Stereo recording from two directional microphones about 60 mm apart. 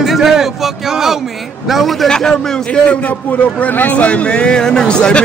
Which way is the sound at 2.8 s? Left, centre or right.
Left.